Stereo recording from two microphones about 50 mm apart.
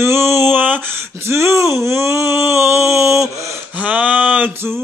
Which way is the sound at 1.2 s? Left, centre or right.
Right.